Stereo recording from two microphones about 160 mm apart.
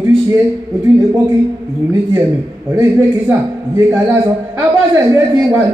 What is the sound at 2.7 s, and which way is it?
A man's voice, 15° right (ahead or behind).